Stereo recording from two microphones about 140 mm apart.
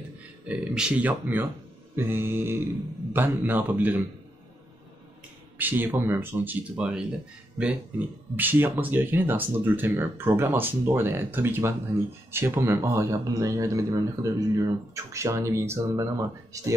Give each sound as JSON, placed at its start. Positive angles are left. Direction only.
{"t": 0.5, "sound": "speech", "side_deg": -5}
{"t": 5.6, "sound": "speech", "side_deg": -15}